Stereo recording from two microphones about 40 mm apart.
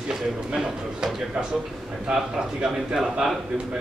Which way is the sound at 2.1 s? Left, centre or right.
Centre.